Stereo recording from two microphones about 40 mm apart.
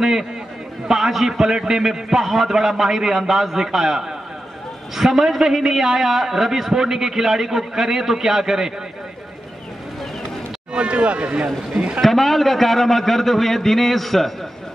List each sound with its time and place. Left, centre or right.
0.0 s a man's voice: centre
10.7 s speech: right
12.0 s a man's voice: centre